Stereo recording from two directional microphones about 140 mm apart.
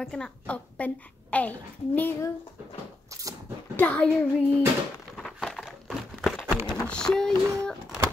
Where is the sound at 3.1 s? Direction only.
25° right (ahead or behind).